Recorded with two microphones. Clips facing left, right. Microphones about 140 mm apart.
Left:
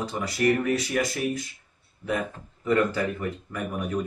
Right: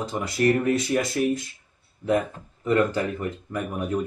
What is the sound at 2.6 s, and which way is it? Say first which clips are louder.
Speech: right 1 dB; 20° right (ahead or behind).